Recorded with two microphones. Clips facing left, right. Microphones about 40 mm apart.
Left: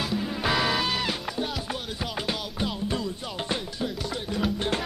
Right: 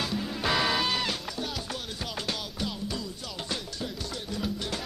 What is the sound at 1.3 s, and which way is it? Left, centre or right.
Music, centre.